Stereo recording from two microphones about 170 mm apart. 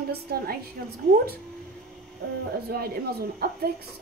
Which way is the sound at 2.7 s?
65° right (ahead or behind).